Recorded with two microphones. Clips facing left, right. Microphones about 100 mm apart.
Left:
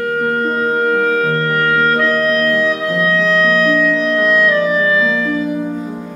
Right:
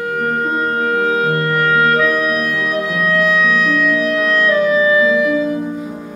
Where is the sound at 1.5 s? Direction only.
5° right (ahead or behind).